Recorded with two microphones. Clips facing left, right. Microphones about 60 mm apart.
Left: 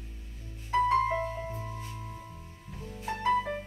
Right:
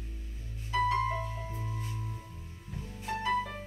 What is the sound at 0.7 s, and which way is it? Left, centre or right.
Music, left.